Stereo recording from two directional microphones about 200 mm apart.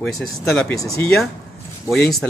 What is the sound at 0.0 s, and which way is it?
Speech, centre (ahead or behind).